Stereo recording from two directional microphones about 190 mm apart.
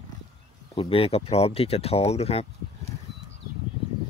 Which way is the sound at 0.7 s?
30° left (ahead or behind).